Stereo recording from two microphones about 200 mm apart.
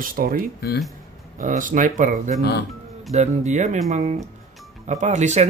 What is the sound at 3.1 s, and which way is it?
Speech, 35° right (ahead or behind).